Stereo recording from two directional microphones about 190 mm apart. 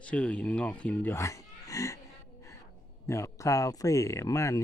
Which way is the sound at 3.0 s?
15° left (ahead or behind).